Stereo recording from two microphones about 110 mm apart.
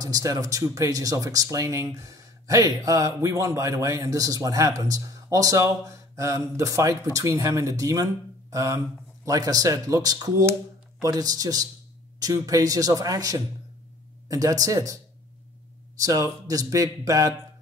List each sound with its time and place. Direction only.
0.0 s speech: 35° right (ahead or behind)
16.0 s speech: 30° right (ahead or behind)